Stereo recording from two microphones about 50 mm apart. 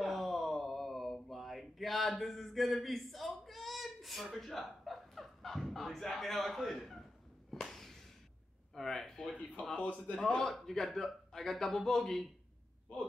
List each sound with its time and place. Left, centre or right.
0.0 s a sound: centre
7.6 s music: centre
8.7 s speech: centre
9.8 s a man's voice: left
10.5 s a man's voice: centre